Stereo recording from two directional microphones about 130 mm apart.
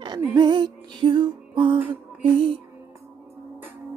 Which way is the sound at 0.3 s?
35° right (ahead or behind).